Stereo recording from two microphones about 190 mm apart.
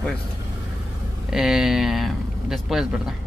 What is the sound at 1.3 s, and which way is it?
Speech, centre (ahead or behind).